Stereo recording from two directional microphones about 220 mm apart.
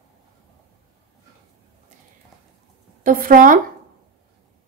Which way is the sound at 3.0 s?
40° right (ahead or behind).